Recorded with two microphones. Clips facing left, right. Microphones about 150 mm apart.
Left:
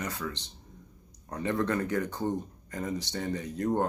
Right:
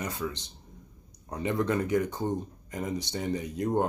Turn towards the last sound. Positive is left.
turn(degrees=-15)  # may be behind; listen again after turning